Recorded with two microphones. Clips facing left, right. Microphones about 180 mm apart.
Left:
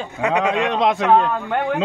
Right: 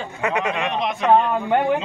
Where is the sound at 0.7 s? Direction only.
85° left.